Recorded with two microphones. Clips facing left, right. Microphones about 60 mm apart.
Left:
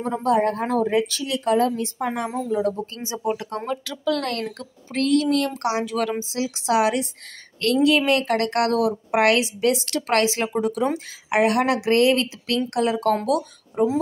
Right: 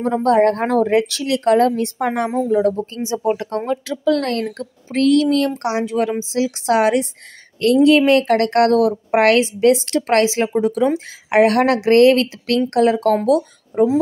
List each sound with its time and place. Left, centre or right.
0.0 s speech: right
3.0 s speech: right
3.4 s a woman's voice: right
5.5 s a woman's voice: right
11.2 s a woman's voice: right